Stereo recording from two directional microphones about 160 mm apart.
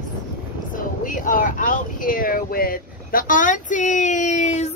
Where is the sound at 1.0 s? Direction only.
55° left (ahead or behind).